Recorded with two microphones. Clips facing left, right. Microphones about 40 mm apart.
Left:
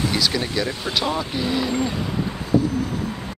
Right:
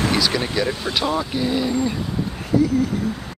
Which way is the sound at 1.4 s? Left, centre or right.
Left.